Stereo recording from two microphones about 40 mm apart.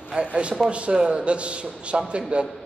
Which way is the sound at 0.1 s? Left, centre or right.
Right.